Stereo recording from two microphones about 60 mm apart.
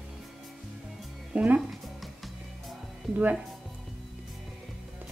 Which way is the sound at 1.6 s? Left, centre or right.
Centre.